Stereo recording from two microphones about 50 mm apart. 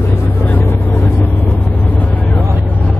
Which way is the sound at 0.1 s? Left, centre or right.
Left.